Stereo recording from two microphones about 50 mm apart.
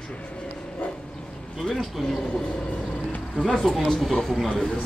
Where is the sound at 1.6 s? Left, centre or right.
Centre.